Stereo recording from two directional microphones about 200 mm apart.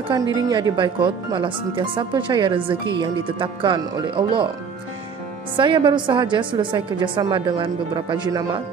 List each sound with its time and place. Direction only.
0.1 s speech: 20° right (ahead or behind)
5.6 s speech: 25° right (ahead or behind)